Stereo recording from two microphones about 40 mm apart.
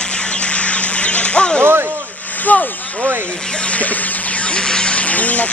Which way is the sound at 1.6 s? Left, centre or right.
Right.